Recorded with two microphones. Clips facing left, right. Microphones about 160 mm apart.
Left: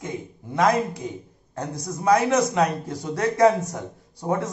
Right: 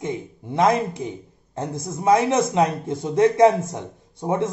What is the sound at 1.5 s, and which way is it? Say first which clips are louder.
Speech: right 2 dB; 25° right (ahead or behind).